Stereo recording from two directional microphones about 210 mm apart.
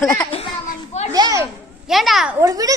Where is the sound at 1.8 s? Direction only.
Centre (ahead or behind).